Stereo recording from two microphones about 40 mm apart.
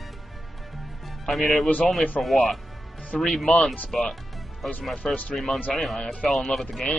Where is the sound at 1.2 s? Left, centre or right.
Centre.